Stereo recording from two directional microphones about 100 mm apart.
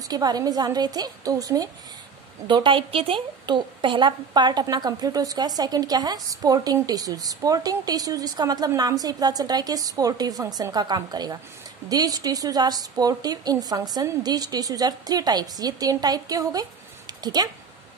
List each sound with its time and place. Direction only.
0.1 s a woman's voice: 40° right (ahead or behind)
2.4 s a woman's voice: 55° right (ahead or behind)